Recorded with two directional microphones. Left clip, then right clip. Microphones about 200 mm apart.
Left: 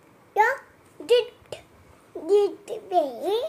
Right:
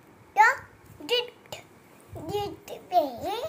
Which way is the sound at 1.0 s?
35° left (ahead or behind).